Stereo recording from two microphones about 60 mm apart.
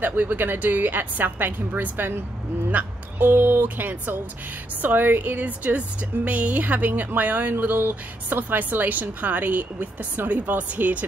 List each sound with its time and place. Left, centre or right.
0.0 s a woman's voice: right